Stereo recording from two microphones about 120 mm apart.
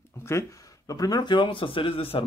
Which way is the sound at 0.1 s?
25° left (ahead or behind).